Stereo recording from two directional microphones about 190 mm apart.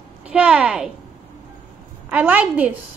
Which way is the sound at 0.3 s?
5° right (ahead or behind).